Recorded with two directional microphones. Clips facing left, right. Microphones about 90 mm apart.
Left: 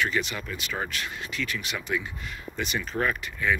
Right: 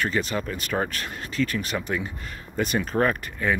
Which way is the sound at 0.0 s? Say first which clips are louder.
Right 2 dB; 40° right (ahead or behind).